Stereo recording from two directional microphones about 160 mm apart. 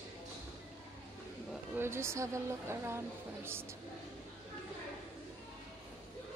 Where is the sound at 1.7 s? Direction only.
15° right (ahead or behind).